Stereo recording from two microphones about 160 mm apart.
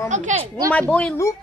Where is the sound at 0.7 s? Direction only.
10° left (ahead or behind).